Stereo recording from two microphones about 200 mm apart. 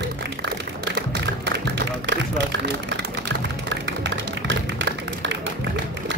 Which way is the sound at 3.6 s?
60° right (ahead or behind).